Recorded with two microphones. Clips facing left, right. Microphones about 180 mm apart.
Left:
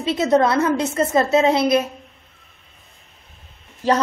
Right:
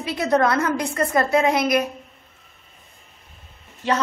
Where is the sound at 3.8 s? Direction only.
35° left (ahead or behind).